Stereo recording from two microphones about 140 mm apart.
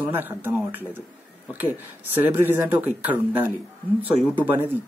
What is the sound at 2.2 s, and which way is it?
Speech, 15° right (ahead or behind).